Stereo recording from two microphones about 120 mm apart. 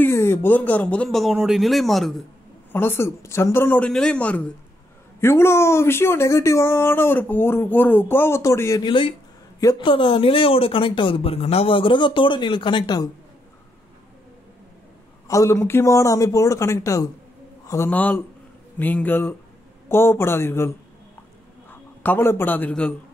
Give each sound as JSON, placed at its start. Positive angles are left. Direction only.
{"t": 0.0, "sound": "speech", "side_deg": 20}
{"t": 2.7, "sound": "speech", "side_deg": 20}
{"t": 5.2, "sound": "speech", "side_deg": 20}
{"t": 8.8, "sound": "speech", "side_deg": 45}
{"t": 15.2, "sound": "speech", "side_deg": 25}
{"t": 17.8, "sound": "a man's voice", "side_deg": 15}